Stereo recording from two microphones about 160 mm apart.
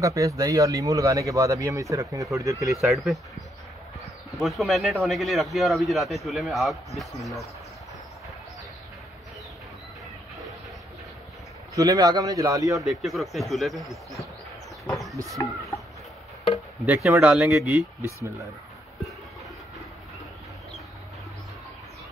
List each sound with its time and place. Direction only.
0.0 s speech: 20° right (ahead or behind)
2.7 s speech: centre (ahead or behind)
11.7 s speech: 20° right (ahead or behind)
12.7 s speech: centre (ahead or behind)
14.9 s livestock: centre (ahead or behind)
16.8 s speech: 10° right (ahead or behind)